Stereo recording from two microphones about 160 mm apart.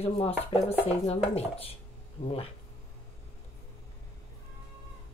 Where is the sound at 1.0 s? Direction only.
40° left (ahead or behind).